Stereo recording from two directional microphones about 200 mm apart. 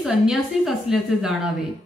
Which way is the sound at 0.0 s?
Centre (ahead or behind).